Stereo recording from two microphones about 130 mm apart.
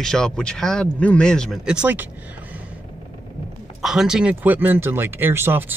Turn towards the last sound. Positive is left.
turn(degrees=-15)  # may be behind; listen again after turning